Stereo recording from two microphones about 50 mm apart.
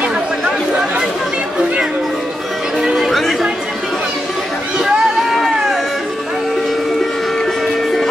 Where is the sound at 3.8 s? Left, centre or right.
Centre.